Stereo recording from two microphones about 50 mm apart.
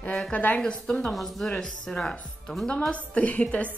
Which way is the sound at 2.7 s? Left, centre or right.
Left.